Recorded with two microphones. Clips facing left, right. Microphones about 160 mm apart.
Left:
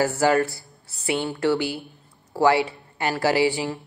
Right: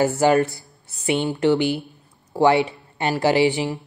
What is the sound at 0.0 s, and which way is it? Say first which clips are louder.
A man's voice: right 3 dB; 20° right (ahead or behind).